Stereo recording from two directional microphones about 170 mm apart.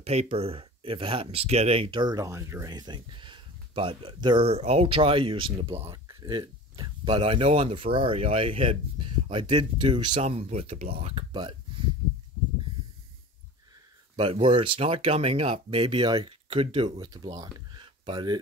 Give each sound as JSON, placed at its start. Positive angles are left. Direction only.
{"t": 0.0, "sound": "speech", "side_deg": -35}
{"t": 10.2, "sound": "speech", "side_deg": -40}
{"t": 14.1, "sound": "speech", "side_deg": -30}